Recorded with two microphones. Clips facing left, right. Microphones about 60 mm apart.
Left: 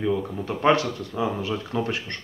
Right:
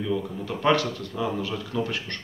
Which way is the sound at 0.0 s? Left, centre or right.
Left.